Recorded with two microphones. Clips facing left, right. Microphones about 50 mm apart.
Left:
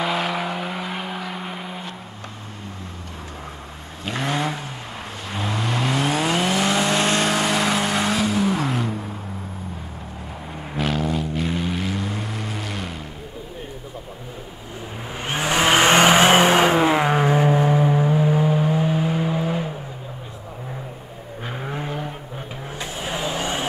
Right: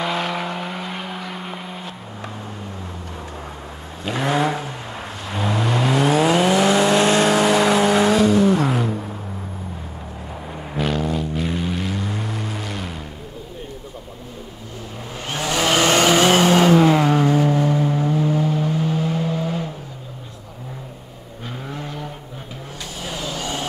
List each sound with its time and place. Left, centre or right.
0.0 s vehicle: centre
4.0 s vehicle: centre
10.3 s vehicle: centre
15.1 s vehicle: centre
21.5 s vehicle: left
22.8 s music: left